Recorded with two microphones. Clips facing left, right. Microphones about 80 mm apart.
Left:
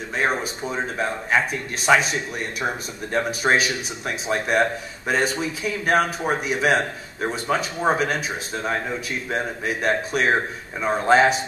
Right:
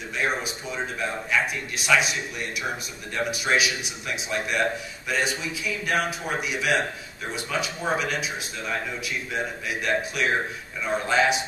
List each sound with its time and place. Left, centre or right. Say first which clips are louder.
0.2 s speech: left 4 dB; left